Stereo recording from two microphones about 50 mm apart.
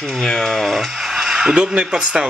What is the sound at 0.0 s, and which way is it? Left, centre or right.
Speech, centre.